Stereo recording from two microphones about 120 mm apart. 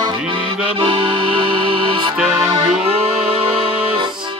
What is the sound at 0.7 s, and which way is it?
Accordion, 45° right (ahead or behind).